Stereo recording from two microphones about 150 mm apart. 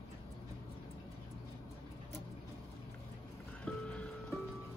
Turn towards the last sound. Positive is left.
turn(degrees=5)  # may be behind; listen again after turning